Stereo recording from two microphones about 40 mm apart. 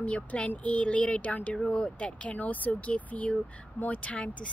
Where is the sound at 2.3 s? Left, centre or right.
Left.